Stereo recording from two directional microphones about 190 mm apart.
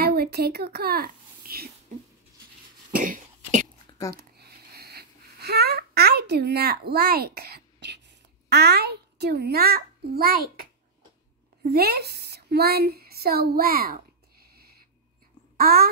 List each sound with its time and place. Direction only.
0.0 s a woman's voice: 55° right (ahead or behind)
3.0 s cough: 45° right (ahead or behind)
4.1 s a sound: 55° right (ahead or behind)
11.6 s a woman's voice: 55° right (ahead or behind)
14.4 s a sound: 55° right (ahead or behind)
15.5 s speech: 55° right (ahead or behind)